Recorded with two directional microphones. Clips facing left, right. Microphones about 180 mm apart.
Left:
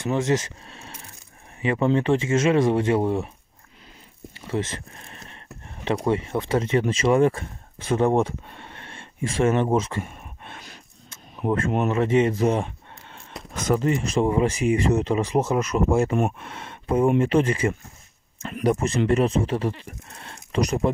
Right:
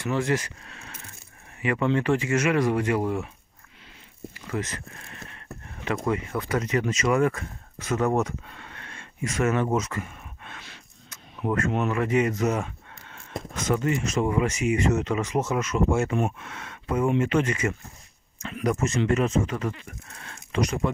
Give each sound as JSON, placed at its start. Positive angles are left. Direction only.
{"t": 0.0, "sound": "speech", "side_deg": 20}
{"t": 4.5, "sound": "speech", "side_deg": 25}
{"t": 6.0, "sound": "speech", "side_deg": 30}
{"t": 11.1, "sound": "cricket", "side_deg": 30}
{"t": 11.9, "sound": "speech", "side_deg": 25}